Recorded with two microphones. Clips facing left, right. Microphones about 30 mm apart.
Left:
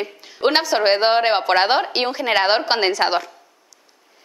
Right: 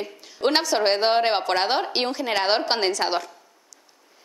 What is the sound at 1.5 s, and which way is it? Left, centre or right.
A woman's voice, left.